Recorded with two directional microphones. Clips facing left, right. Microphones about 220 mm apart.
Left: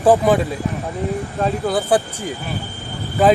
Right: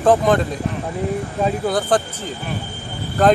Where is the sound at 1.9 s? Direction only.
15° left (ahead or behind).